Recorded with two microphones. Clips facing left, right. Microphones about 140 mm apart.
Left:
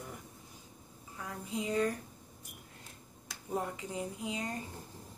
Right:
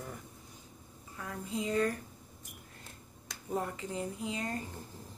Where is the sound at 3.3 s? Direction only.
5° left (ahead or behind).